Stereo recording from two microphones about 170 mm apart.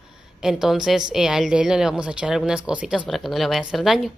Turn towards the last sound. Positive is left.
turn(degrees=0)  # may be behind; listen again after turning